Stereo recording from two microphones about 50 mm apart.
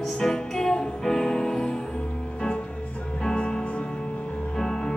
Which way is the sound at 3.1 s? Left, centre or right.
Centre.